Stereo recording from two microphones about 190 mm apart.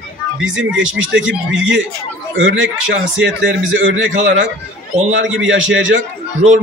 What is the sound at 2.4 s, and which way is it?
A man's voice, 70° right (ahead or behind).